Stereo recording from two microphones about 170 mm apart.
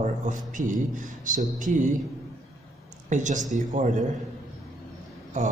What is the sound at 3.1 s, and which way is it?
Speech, 45° right (ahead or behind).